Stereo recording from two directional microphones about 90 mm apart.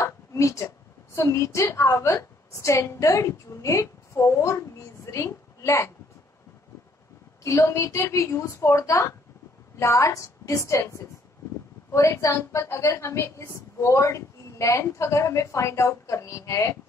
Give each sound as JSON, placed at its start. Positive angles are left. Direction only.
{"t": 0.0, "sound": "a woman's voice", "side_deg": 35}
{"t": 7.4, "sound": "a woman's voice", "side_deg": 35}